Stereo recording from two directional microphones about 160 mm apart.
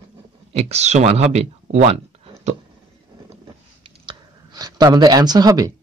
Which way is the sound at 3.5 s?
30° right (ahead or behind).